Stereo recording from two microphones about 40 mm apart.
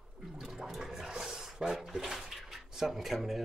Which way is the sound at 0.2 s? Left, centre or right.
Centre.